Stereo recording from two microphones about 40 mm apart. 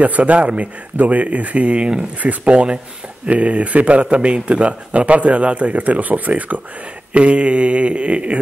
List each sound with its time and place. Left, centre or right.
0.0 s speech: right
7.2 s mantra: right